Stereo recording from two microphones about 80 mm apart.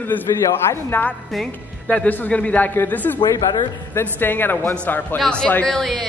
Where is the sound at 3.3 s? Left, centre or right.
Left.